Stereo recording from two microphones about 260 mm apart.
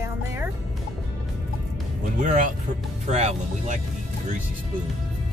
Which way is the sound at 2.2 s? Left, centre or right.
Right.